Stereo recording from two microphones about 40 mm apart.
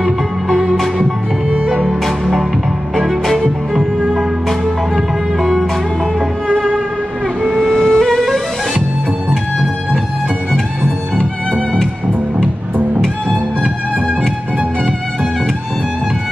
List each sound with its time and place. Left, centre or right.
0.0 s music: centre
3.1 s music: centre
5.4 s music: centre
7.7 s music: centre
13.3 s music: right